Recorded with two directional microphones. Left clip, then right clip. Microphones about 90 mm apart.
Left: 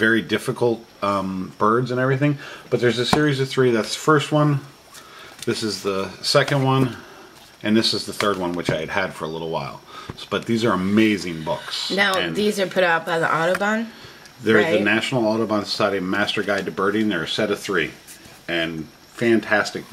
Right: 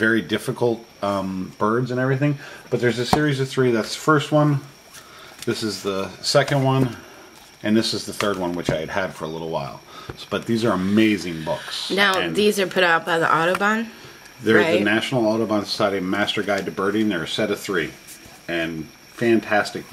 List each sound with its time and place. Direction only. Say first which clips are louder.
0.0 s speech: left 1 dB; 20° right (ahead or behind)
2.0 s speech: left 1 dB; 5° right (ahead or behind)
3.3 s speech: left 1 dB; 25° right (ahead or behind)
19.1 s speech: even; 15° right (ahead or behind)